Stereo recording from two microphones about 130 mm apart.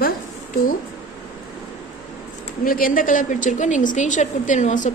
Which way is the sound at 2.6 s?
90° left.